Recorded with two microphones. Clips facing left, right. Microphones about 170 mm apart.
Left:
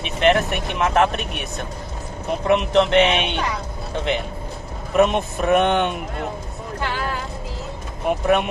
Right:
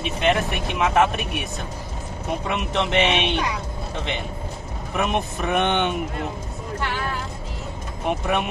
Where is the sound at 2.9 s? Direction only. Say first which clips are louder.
Left 3 dB; centre (ahead or behind).